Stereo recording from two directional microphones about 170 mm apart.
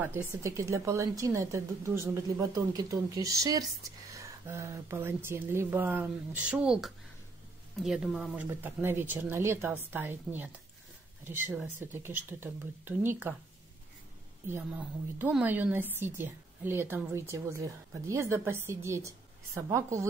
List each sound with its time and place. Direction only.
0.0 s a woman's voice: 10° right (ahead or behind)
14.5 s a woman's voice: 10° right (ahead or behind)